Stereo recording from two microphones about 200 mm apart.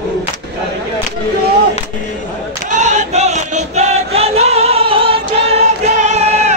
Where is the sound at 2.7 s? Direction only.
35° right (ahead or behind).